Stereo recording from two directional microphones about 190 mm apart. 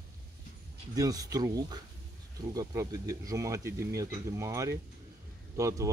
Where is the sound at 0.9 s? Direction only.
20° right (ahead or behind).